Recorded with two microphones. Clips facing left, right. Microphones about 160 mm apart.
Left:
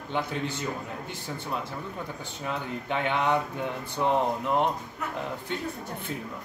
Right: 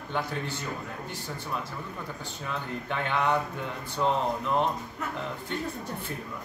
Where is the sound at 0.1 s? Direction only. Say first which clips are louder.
Left 2 dB; 20° left (ahead or behind).